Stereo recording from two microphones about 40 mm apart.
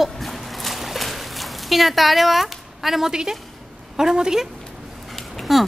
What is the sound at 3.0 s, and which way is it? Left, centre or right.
A woman's voice, centre.